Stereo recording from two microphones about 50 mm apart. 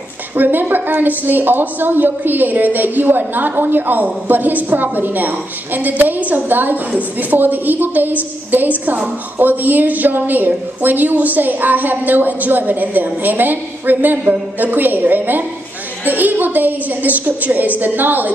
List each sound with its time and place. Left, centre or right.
0.4 s a woman's voice: right